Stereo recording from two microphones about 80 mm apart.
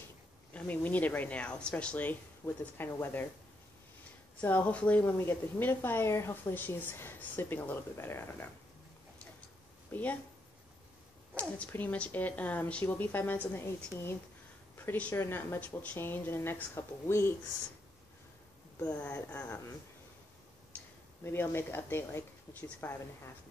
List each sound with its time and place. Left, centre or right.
0.5 s speech: centre
4.4 s speech: left
6.5 s speech: left
11.3 s a woman's voice: centre; by 13.7 s left
14.8 s speech: left
18.9 s speech: left
20.7 s speech: left